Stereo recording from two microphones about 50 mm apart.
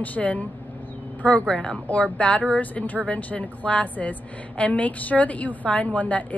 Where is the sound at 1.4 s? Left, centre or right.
Centre.